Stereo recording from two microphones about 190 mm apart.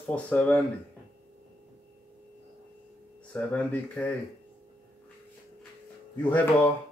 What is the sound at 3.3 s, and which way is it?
Speech, 5° left (ahead or behind).